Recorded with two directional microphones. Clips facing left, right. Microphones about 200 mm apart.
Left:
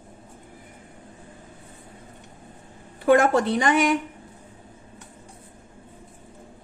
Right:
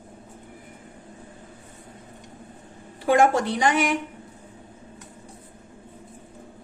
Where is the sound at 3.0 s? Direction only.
55° left (ahead or behind).